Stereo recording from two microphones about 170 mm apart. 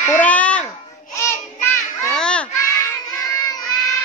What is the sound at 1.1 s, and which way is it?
Child singing, 15° left (ahead or behind).